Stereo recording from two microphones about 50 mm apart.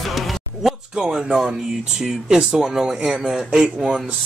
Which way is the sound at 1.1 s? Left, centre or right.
Centre.